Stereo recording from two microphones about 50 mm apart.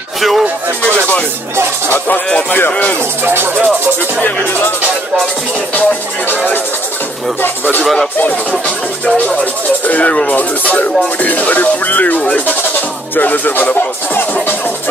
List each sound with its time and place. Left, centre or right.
0.2 s music: centre
2.7 s speech: left
3.3 s speech: right
4.2 s speech: left
6.2 s speech: left
7.8 s speech: centre
8.2 s speech: left